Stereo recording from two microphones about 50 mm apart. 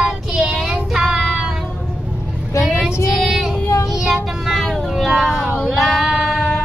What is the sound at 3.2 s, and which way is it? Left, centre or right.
Child singing, centre.